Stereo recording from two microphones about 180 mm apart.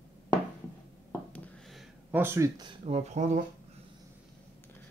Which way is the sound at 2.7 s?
35° right (ahead or behind).